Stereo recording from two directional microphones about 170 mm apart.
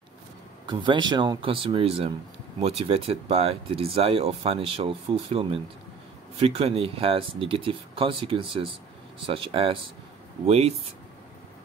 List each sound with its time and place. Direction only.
0.7 s speech: 30° right (ahead or behind)